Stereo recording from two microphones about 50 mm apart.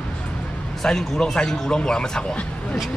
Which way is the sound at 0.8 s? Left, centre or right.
Centre.